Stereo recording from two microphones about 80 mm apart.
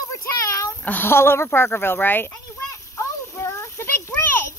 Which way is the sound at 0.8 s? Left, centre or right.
Left.